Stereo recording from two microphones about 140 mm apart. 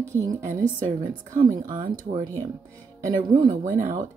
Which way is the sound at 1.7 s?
30° right (ahead or behind).